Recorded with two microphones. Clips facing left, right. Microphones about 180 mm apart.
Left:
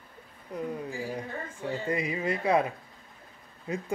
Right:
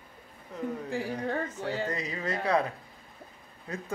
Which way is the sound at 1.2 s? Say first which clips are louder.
Right 4 dB; 75° right (ahead or behind).